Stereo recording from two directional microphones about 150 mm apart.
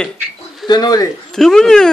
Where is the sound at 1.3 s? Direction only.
5° left (ahead or behind).